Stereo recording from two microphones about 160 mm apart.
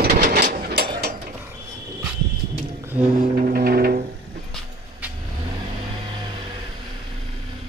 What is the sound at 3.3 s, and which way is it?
Music, 50° right (ahead or behind).